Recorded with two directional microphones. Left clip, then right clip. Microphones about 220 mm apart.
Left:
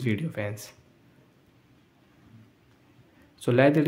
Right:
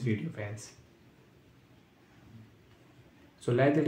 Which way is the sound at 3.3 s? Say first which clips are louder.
Left 6 dB; 45° left (ahead or behind).